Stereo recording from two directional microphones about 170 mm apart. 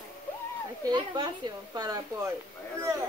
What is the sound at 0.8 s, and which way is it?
A woman's voice, 25° right (ahead or behind).